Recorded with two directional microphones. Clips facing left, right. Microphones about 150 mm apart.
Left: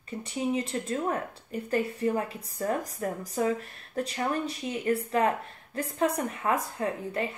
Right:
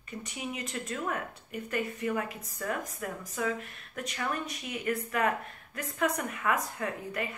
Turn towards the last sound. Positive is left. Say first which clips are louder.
# left 4 dB
turn(degrees=30)  # may be behind; listen again after turning